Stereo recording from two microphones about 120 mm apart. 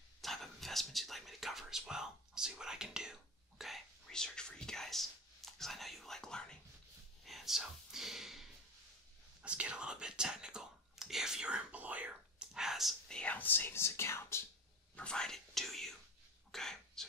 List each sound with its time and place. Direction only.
0.2 s speech: centre (ahead or behind)
13.2 s speech: 15° left (ahead or behind)
15.0 s speech: 5° left (ahead or behind)